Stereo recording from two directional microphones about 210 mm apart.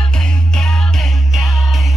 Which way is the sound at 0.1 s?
5° left (ahead or behind).